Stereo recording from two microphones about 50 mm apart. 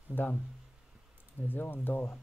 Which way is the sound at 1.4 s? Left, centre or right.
Left.